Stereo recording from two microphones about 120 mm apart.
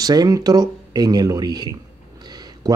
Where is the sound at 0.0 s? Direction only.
30° right (ahead or behind).